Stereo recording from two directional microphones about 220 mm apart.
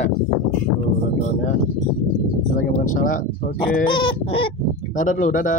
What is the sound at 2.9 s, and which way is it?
Speech, 40° left (ahead or behind).